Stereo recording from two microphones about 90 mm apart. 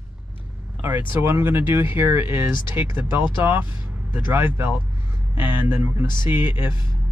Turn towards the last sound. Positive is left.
turn(degrees=-25)  # may be behind; listen again after turning